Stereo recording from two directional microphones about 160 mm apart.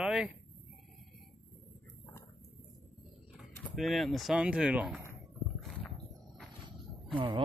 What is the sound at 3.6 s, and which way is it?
Speech, centre (ahead or behind).